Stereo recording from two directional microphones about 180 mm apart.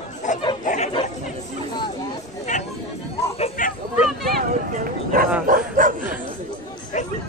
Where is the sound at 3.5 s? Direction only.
50° left (ahead or behind).